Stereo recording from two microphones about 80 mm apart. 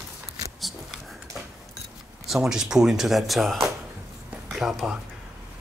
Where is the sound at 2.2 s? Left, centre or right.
Centre.